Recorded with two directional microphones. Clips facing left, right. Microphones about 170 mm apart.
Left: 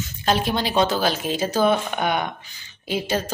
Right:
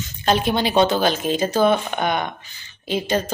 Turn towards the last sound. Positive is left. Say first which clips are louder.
# right 2 dB
turn(degrees=10)  # may be behind; listen again after turning